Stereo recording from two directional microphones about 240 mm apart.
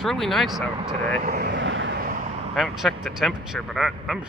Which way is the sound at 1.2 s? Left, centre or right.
Right.